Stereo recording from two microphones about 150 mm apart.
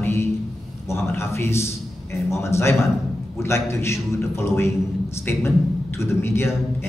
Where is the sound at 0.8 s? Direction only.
15° left (ahead or behind).